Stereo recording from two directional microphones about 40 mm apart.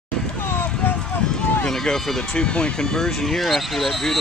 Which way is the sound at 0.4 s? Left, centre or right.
Left.